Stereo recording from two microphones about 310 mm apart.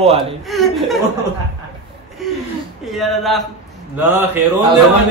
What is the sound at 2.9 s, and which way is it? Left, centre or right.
Speech, centre.